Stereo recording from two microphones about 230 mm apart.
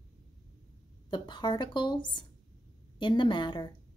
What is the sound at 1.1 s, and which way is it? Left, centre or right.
Speech, centre.